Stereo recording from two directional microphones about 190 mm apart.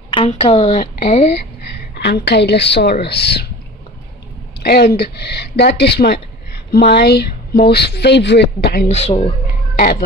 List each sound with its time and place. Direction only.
0.1 s a woman's voice: 30° left (ahead or behind)
2.0 s speech: 60° left (ahead or behind)
4.6 s speech: 55° left (ahead or behind)
8.8 s a woman's voice: 35° left (ahead or behind)
9.8 s speech: 50° left (ahead or behind)